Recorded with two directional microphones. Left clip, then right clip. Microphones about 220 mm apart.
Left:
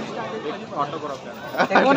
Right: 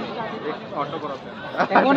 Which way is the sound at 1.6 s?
45° left (ahead or behind).